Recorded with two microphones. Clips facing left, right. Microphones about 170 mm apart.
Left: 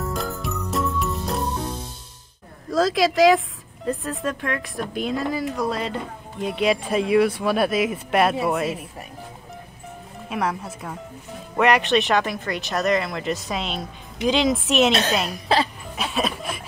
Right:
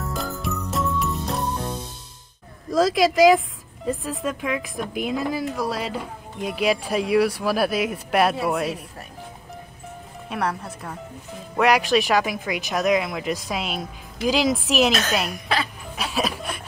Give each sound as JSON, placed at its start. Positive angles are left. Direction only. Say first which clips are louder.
{"t": 0.0, "sound": "jingle", "louder": "left 1 dB", "side_deg": 0}
{"t": 2.7, "sound": "speech", "louder": "right 1 dB", "side_deg": -5}
{"t": 10.3, "sound": "speech", "louder": "left 1 dB", "side_deg": 0}
{"t": 14.9, "sound": "speech", "louder": "left 2 dB", "side_deg": 30}
{"t": 16.0, "sound": "speech", "louder": "left 1 dB", "side_deg": 0}